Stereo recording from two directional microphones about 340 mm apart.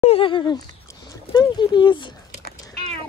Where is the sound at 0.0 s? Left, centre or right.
Centre.